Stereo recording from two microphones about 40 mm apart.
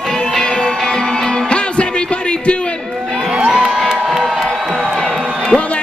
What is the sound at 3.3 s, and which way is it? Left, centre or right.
Crowd, right.